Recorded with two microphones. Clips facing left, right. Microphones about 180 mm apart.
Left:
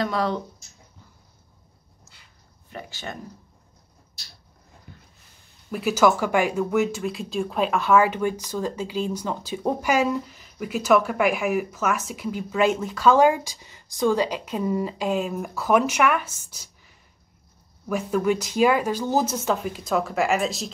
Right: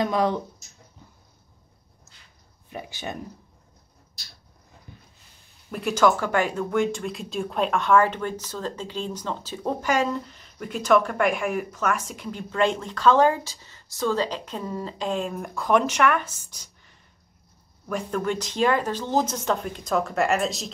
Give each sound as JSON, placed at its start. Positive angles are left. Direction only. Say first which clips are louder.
{"t": 0.0, "sound": "speech", "louder": "right 2 dB", "side_deg": -15}
{"t": 2.7, "sound": "speech", "louder": "right 2 dB", "side_deg": -15}
{"t": 5.7, "sound": "speech", "louder": "left 1 dB", "side_deg": 5}
{"t": 17.8, "sound": "speech", "louder": "left 4 dB", "side_deg": 5}